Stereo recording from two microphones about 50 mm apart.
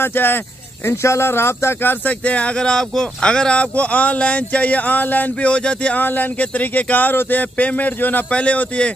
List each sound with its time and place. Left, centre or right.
0.0 s speech: left
0.8 s speech: left
2.0 s speech: left
5.9 s speech: left
8.3 s speech: left